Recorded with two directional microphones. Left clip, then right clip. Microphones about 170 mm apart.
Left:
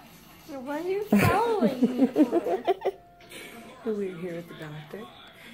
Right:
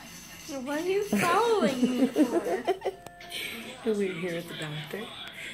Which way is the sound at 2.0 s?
35° left (ahead or behind).